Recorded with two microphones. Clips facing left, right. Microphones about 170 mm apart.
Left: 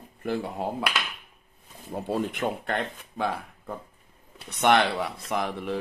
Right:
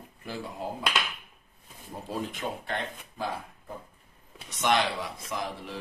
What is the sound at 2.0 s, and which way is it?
Speech, 65° left (ahead or behind).